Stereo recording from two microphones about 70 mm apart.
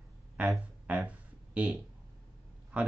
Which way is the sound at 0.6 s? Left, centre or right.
Centre.